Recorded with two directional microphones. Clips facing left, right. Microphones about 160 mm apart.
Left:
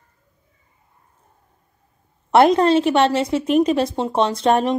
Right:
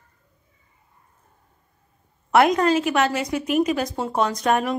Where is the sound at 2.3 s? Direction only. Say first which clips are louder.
Left 4 dB; 30° left (ahead or behind).